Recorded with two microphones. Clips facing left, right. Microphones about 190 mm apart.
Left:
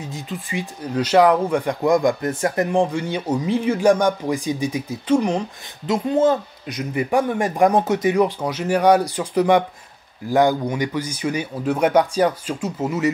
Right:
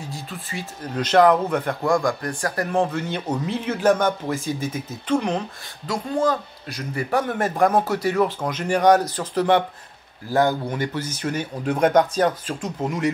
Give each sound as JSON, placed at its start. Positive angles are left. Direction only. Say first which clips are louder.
{"t": 0.0, "sound": "speech", "louder": "left 4 dB", "side_deg": 20}
{"t": 5.9, "sound": "speech", "louder": "left 5 dB", "side_deg": 20}